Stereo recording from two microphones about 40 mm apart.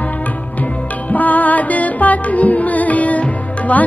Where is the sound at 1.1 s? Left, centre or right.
Left.